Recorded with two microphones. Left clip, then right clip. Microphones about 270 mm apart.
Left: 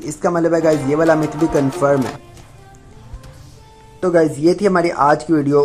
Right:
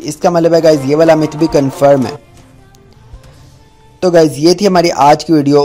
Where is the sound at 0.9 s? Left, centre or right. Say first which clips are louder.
Right 6 dB; right.